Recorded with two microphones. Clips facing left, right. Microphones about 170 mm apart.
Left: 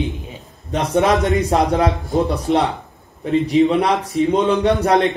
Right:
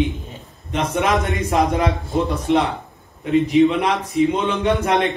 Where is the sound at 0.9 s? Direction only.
35° left (ahead or behind).